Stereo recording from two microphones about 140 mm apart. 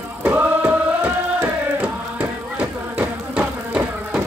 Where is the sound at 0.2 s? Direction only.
10° right (ahead or behind).